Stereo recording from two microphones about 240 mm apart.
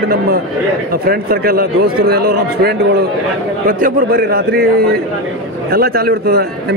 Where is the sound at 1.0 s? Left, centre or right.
Right.